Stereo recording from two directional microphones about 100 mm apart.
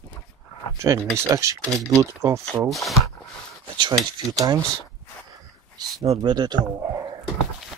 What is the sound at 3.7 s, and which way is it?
Speech, 50° right (ahead or behind).